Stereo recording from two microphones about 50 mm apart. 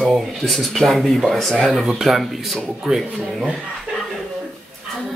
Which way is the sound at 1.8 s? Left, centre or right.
Centre.